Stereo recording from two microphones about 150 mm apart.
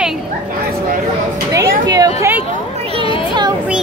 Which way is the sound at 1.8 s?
25° right (ahead or behind).